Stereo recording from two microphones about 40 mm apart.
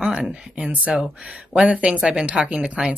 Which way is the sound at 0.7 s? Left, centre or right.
Right.